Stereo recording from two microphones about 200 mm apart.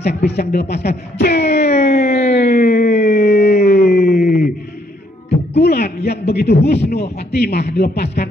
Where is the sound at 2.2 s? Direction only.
50° left (ahead or behind).